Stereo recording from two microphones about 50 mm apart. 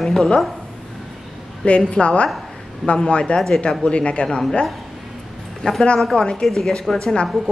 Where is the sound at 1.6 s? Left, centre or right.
Left.